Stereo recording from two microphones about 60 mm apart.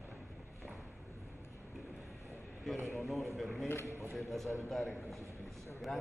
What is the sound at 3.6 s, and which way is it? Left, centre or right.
Speech, left.